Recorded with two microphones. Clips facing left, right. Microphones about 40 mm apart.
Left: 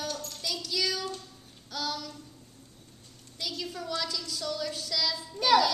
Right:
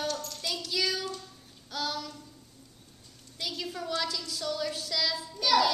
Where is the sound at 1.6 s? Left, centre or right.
Centre.